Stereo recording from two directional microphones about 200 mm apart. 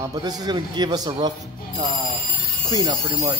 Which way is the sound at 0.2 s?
20° right (ahead or behind).